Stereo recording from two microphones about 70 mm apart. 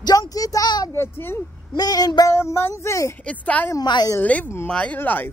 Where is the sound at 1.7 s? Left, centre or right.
Left.